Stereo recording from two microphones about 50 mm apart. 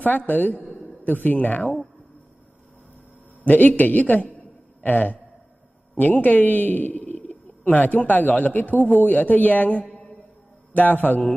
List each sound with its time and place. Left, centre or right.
0.3 s a man's voice: left
0.6 s a sound: left
1.2 s a man's voice: left
3.4 s a man's voice: left